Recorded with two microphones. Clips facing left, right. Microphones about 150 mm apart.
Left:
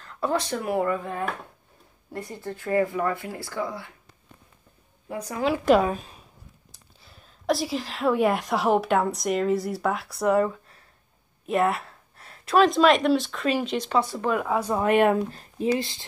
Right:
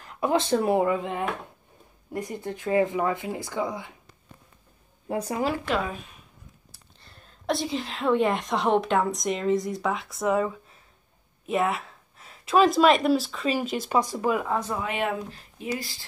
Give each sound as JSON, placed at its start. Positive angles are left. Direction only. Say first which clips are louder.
{"t": 0.0, "sound": "speech", "louder": "right 2 dB", "side_deg": -15}
{"t": 5.0, "sound": "speech", "louder": "right 4 dB", "side_deg": -30}
{"t": 5.7, "sound": "speech", "louder": "left 8 dB", "side_deg": 40}
{"t": 7.0, "sound": "a woman's voice", "louder": "even", "side_deg": 5}
{"t": 14.4, "sound": "a woman's voice", "louder": "left 2 dB", "side_deg": 5}
{"t": 14.8, "sound": "speech", "louder": "left 8 dB", "side_deg": 55}
{"t": 15.6, "sound": "speech", "louder": "left 7 dB", "side_deg": 25}